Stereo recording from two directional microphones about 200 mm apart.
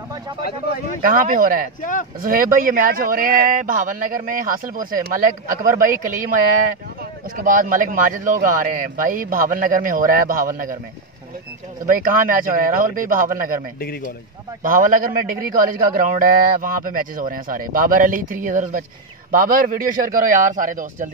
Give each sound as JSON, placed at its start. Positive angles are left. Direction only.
{"t": 1.0, "sound": "a man's voice", "side_deg": -40}
{"t": 1.8, "sound": "speech", "side_deg": 40}
{"t": 2.2, "sound": "a man's voice", "side_deg": -45}
{"t": 11.8, "sound": "a man's voice", "side_deg": -45}
{"t": 13.7, "sound": "speech", "side_deg": 50}
{"t": 14.6, "sound": "a man's voice", "side_deg": -45}